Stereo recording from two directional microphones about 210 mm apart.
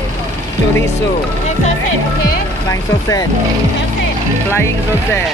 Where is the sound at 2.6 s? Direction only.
15° left (ahead or behind).